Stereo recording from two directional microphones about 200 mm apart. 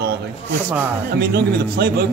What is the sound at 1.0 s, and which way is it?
A man's voice, 55° right (ahead or behind).